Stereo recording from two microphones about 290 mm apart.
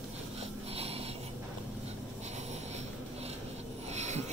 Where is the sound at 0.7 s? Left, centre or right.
Right.